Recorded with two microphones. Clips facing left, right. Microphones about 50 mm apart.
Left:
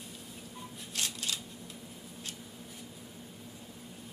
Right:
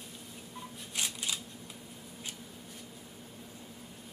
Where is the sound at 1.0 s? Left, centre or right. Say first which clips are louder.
Even; centre.